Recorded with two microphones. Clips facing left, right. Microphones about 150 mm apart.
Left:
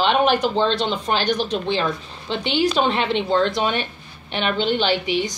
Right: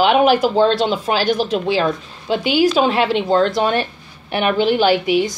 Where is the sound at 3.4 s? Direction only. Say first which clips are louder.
Right 4 dB; 45° right (ahead or behind).